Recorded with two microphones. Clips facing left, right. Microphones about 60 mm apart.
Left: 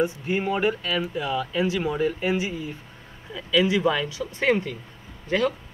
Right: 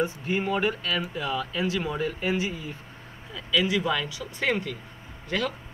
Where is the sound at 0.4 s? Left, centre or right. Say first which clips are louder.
Left 2 dB; centre.